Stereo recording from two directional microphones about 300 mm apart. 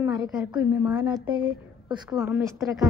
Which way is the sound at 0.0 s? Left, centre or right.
Centre.